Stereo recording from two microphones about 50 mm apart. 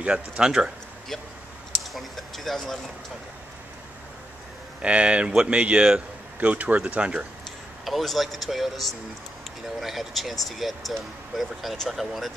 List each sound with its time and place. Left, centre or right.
0.0 s speech: centre
2.0 s a sound: centre
4.8 s a man's voice: right
7.8 s speech: centre